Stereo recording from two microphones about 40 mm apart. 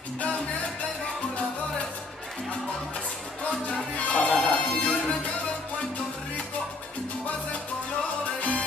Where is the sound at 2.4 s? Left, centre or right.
Left.